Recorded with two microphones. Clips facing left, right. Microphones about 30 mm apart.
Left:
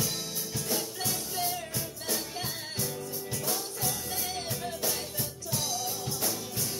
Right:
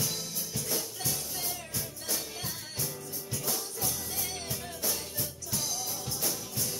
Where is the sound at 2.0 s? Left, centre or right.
Left.